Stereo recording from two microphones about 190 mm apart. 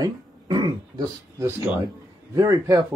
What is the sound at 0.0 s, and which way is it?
Throat clearing, 20° right (ahead or behind).